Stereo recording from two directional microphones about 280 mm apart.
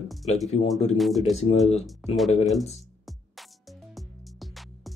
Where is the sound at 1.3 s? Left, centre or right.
Left.